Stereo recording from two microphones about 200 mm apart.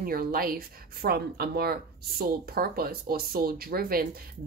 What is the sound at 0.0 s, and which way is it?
Speech, 45° right (ahead or behind).